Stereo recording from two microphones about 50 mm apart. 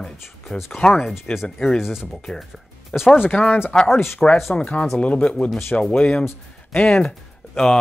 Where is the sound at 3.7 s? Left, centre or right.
Centre.